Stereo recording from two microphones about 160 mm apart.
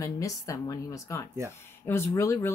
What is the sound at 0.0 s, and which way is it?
Speech, 20° left (ahead or behind).